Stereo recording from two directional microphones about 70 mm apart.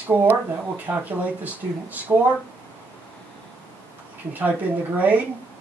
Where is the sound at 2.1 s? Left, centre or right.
Right.